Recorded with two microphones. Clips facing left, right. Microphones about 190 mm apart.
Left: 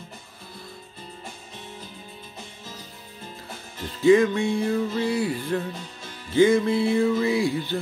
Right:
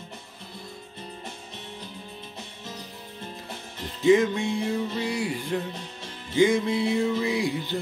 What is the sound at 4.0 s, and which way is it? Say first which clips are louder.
Music: left 2 dB; 20° right (ahead or behind).